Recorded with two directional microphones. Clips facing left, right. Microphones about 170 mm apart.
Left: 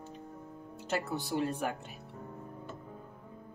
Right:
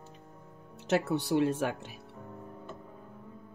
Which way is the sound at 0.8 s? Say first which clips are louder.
Right 6 dB; 75° right (ahead or behind).